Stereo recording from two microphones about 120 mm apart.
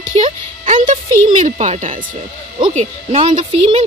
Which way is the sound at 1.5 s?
70° right (ahead or behind).